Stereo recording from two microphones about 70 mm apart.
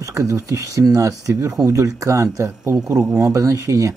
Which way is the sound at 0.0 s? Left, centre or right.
Right.